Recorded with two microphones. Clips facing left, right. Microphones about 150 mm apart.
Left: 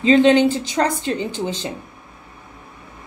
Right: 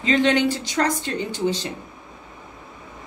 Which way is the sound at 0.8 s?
25° left (ahead or behind).